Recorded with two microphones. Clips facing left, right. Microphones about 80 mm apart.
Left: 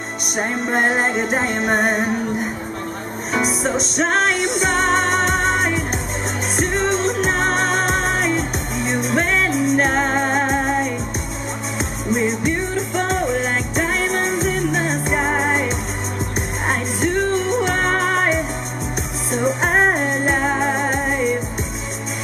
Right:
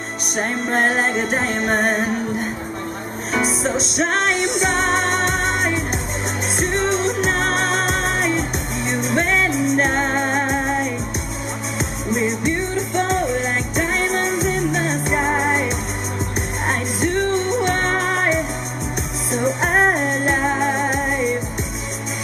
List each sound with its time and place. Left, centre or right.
0.4 s music: centre
12.1 s music: centre